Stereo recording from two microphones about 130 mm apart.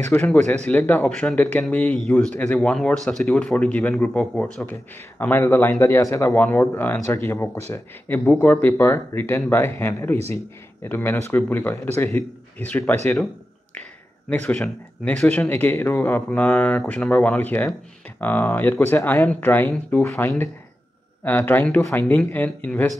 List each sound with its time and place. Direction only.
0.2 s a man's voice: 10° left (ahead or behind)
14.4 s a man's voice: 10° left (ahead or behind)